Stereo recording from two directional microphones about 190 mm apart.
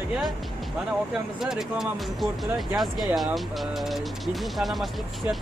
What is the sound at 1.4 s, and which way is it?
Speech, centre (ahead or behind).